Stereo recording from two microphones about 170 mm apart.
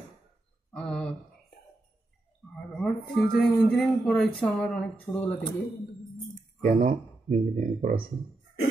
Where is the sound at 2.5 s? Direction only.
5° left (ahead or behind).